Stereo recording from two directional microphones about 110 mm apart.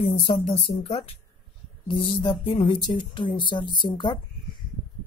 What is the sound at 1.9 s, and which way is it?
A woman's voice, 55° left (ahead or behind).